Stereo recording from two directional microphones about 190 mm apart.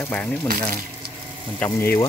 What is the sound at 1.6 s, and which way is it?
Speech, 10° left (ahead or behind).